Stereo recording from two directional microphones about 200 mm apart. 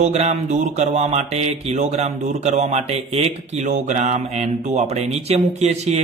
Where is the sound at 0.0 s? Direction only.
35° right (ahead or behind).